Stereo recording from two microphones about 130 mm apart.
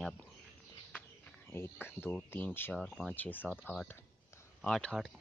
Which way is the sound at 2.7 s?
Centre (ahead or behind).